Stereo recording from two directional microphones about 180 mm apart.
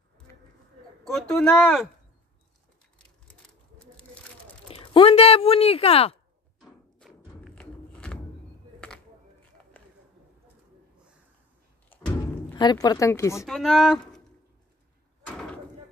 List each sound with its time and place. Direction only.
1.0 s speech: 5° left (ahead or behind)
4.6 s speech: 30° left (ahead or behind)
6.6 s music: centre (ahead or behind)
9.8 s a sound: 10° left (ahead or behind)
11.9 s a sound: 10° left (ahead or behind)
12.5 s speech: 20° left (ahead or behind)
13.5 s speech: centre (ahead or behind)
15.2 s door: 5° left (ahead or behind)